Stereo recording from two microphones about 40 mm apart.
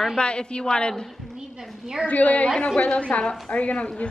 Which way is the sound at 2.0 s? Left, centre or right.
Left.